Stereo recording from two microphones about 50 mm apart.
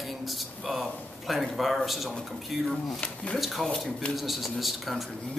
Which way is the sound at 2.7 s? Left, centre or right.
Left.